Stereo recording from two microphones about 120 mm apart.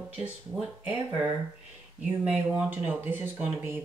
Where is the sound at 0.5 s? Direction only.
10° right (ahead or behind).